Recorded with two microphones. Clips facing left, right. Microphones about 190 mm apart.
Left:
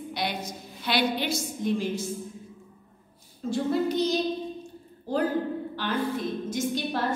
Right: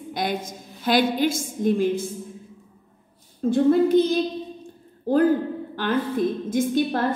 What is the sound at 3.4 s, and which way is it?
Speech, 55° right (ahead or behind).